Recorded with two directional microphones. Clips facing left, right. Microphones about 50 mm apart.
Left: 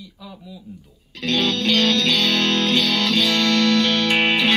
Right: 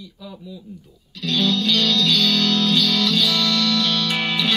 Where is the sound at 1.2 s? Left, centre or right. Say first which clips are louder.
Even; left.